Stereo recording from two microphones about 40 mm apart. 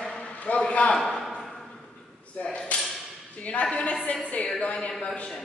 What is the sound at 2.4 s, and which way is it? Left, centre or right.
Speech, left.